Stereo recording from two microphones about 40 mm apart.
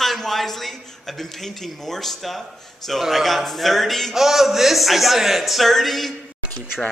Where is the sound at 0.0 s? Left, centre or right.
Centre.